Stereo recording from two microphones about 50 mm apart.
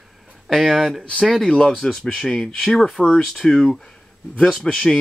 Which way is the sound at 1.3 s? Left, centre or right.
Centre.